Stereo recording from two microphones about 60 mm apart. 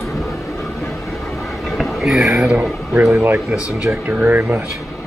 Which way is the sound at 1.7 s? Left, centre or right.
Centre.